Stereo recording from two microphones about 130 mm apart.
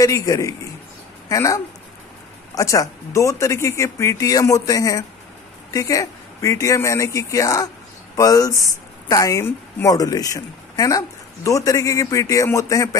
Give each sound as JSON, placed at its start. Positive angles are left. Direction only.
{"t": 0.0, "sound": "speech", "side_deg": 25}